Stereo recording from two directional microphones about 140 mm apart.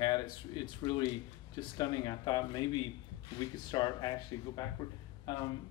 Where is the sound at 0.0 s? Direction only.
30° left (ahead or behind).